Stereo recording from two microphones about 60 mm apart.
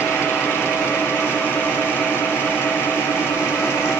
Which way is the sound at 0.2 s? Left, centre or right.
Left.